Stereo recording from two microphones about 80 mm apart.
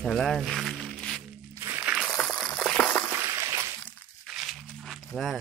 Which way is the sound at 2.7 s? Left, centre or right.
Centre.